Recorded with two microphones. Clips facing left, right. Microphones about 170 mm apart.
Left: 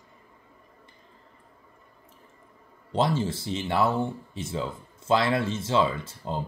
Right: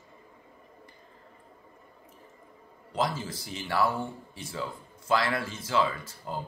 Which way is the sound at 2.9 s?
25° left (ahead or behind).